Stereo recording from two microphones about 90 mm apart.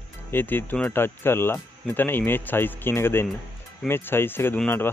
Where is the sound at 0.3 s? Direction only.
25° left (ahead or behind).